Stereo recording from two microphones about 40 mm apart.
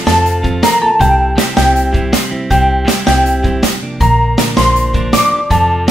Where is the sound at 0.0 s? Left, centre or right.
Centre.